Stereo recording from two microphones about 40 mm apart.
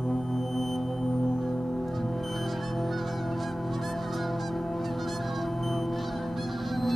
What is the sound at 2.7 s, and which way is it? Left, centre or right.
Honk, centre.